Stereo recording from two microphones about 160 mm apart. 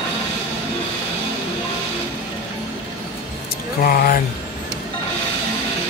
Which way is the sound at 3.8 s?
65° left (ahead or behind).